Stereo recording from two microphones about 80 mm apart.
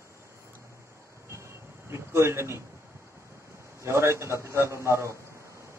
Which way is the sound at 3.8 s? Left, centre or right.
Right.